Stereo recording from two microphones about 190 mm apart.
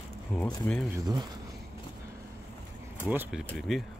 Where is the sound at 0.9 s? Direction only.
20° right (ahead or behind).